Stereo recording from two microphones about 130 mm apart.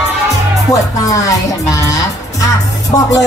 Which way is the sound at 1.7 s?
25° left (ahead or behind).